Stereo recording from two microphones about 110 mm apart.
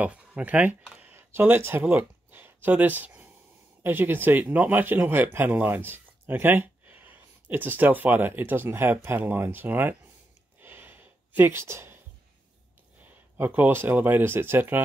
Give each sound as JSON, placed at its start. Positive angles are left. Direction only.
{"t": 0.0, "sound": "speech", "side_deg": -15}
{"t": 10.6, "sound": "a sound", "side_deg": -20}
{"t": 13.4, "sound": "speech", "side_deg": -15}